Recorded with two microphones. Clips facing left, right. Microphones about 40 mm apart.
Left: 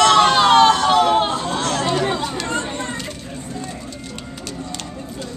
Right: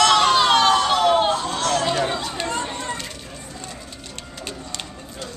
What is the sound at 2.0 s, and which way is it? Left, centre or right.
Chatter, centre.